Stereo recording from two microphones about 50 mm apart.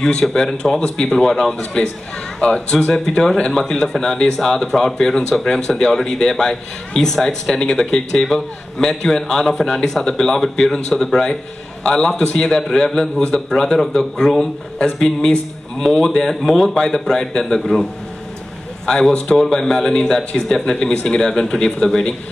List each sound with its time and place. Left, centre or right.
0.3 s a man's voice: centre
2.4 s a man's voice: centre
18.9 s a man's voice: centre